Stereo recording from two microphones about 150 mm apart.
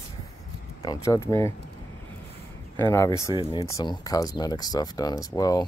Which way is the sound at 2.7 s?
15° left (ahead or behind).